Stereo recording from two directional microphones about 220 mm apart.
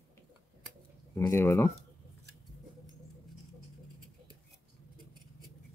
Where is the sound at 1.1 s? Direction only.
10° left (ahead or behind).